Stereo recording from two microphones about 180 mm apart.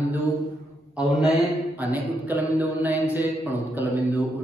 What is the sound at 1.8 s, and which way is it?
A man's voice, 10° right (ahead or behind).